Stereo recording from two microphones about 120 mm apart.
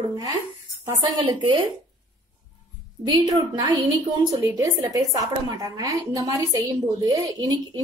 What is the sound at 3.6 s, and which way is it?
A woman's voice, 35° right (ahead or behind).